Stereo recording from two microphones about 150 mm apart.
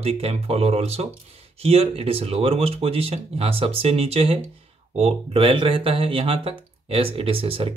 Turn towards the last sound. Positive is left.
turn(degrees=-40)  # may be behind; listen again after turning